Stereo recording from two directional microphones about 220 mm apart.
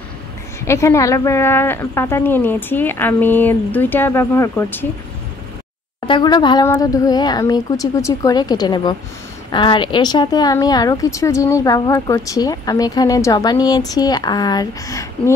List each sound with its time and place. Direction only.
0.7 s speech: 15° left (ahead or behind)
6.0 s speech: 20° left (ahead or behind)